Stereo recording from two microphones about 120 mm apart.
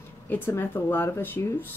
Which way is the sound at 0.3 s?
20° left (ahead or behind).